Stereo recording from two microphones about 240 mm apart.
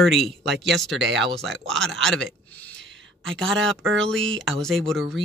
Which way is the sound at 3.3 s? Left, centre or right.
Centre.